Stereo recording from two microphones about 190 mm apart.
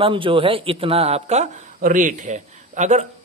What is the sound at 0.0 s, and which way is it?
Speech, 25° right (ahead or behind).